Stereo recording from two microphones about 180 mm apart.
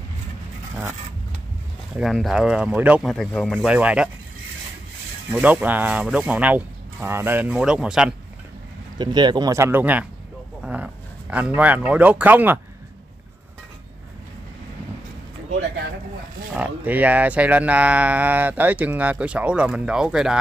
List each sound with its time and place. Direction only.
2.0 s speech: centre (ahead or behind)
5.3 s speech: 10° right (ahead or behind)
8.9 s speech: 25° right (ahead or behind)
16.5 s speech: 10° right (ahead or behind)